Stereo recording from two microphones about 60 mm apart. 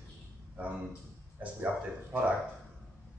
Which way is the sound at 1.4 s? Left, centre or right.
Right.